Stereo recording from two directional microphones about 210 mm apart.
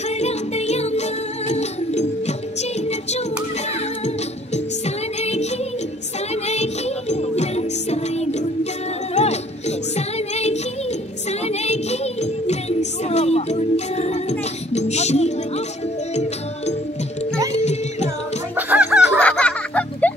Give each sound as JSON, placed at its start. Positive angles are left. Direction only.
{"t": 0.1, "sound": "music", "side_deg": 30}
{"t": 4.6, "sound": "music", "side_deg": 30}
{"t": 17.5, "sound": "music", "side_deg": 30}
{"t": 18.6, "sound": "music", "side_deg": -10}
{"t": 19.1, "sound": "music", "side_deg": 5}